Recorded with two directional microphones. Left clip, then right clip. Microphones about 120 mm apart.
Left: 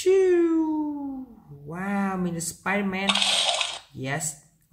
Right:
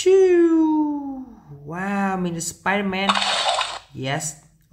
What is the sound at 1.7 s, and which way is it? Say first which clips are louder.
Speech: right 5 dB; 25° right (ahead or behind).